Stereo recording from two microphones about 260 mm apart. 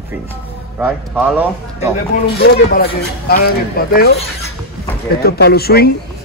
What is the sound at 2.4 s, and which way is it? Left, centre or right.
Speech, left.